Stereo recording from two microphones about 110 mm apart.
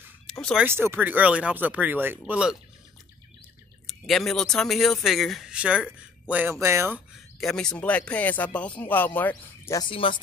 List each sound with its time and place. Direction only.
0.3 s a sound: 5° left (ahead or behind)
0.7 s speech: 20° right (ahead or behind)
3.8 s speech: centre (ahead or behind)
6.5 s speech: 25° right (ahead or behind)
7.3 s speech: 5° left (ahead or behind)
9.8 s speech: 50° left (ahead or behind)